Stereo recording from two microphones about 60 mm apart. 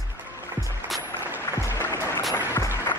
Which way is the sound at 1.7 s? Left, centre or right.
Left.